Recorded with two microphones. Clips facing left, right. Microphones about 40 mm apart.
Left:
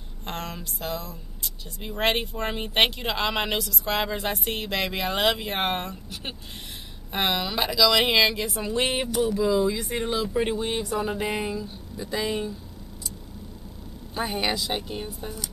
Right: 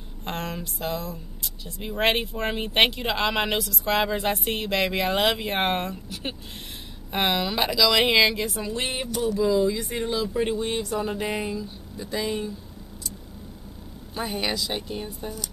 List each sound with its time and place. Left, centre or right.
0.2 s speech: centre
8.7 s speech: centre
9.1 s speech: centre
14.1 s speech: centre